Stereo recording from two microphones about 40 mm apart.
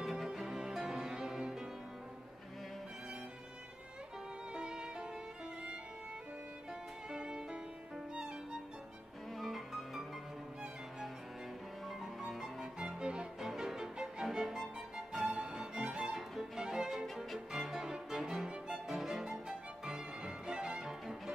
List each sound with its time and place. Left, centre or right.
0.0 s music: centre
4.6 s music: right
7.1 s music: centre
9.4 s music: centre
12.3 s music: centre
13.5 s music: centre
16.0 s music: centre
18.7 s violin: centre
19.3 s music: centre
20.2 s music: right